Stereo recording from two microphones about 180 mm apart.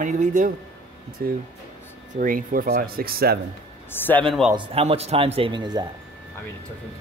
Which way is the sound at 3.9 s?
10° left (ahead or behind).